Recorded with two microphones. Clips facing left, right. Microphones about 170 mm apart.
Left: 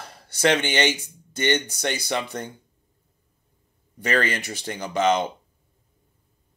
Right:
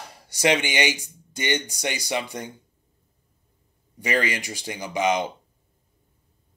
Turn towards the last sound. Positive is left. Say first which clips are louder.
# left 2 dB
turn(degrees=-10)  # may be behind; listen again after turning